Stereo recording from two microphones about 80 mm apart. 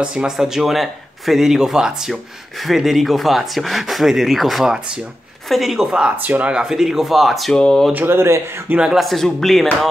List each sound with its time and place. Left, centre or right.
0.0 s speech: centre
6.2 s speech: right
6.5 s speech: centre
7.9 s speech: right
8.7 s speech: centre
9.0 s speech: centre